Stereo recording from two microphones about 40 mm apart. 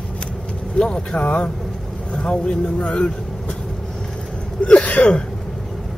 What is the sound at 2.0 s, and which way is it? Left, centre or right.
Speech, left.